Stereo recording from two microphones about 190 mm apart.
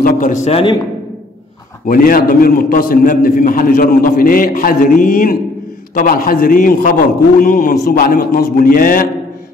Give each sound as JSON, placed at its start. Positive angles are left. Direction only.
{"t": 0.2, "sound": "a man's voice", "side_deg": 40}
{"t": 1.9, "sound": "a man's voice", "side_deg": 50}